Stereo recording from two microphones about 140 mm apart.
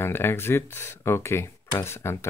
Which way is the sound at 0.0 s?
15° left (ahead or behind).